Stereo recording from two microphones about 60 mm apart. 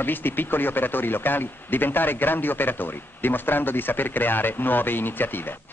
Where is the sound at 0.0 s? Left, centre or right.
Left.